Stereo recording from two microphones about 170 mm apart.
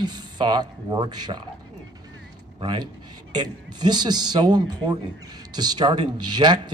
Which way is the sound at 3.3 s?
25° right (ahead or behind).